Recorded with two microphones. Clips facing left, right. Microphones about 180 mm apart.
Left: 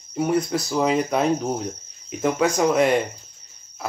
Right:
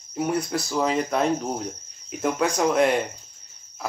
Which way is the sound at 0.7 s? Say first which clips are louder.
Left 3 dB; 5° left (ahead or behind).